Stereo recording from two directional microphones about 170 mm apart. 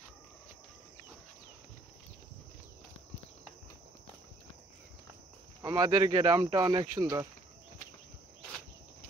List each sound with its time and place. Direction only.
5.6 s speech: 20° right (ahead or behind)